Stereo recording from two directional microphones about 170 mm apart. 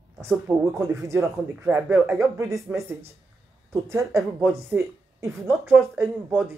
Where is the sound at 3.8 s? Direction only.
15° right (ahead or behind).